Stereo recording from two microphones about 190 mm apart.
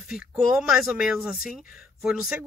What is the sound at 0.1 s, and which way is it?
Speech, 5° right (ahead or behind).